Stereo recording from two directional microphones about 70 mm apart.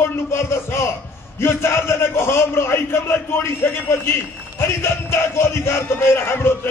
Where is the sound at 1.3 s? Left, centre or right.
Left.